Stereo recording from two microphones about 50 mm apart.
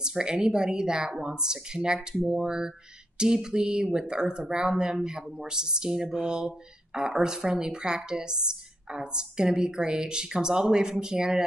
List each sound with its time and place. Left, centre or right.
0.0 s a woman's voice: centre